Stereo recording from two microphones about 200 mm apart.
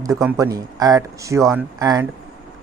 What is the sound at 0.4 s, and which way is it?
Speech, 15° right (ahead or behind).